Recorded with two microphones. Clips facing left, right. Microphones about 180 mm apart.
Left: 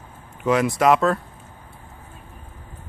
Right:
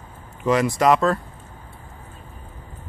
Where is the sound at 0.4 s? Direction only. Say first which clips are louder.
Even; centre (ahead or behind).